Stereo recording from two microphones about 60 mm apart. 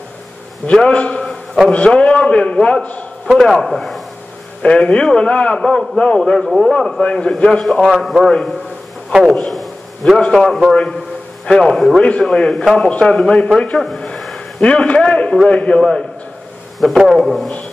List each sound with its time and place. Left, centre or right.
0.7 s a man's voice: centre
3.3 s speech: centre
4.6 s a man's voice: centre
8.0 s a man's voice: centre
9.2 s a sound: centre
10.2 s a man's voice: centre
11.7 s a man's voice: centre
13.8 s a sound: centre
14.6 s a man's voice: centre
16.8 s speech: centre